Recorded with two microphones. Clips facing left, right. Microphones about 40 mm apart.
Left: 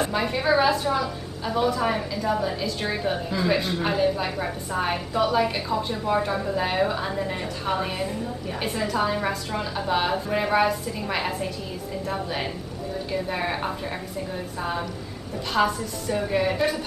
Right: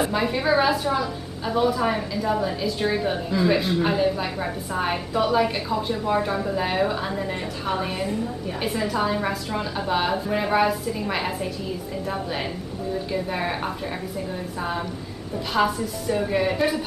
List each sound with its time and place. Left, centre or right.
0.0 s a woman's voice: centre
15.5 s a woman's voice: centre